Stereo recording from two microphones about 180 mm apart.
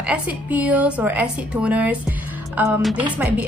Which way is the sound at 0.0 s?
5° right (ahead or behind).